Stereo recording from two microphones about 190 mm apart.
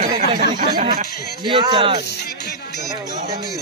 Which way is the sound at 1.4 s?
25° right (ahead or behind).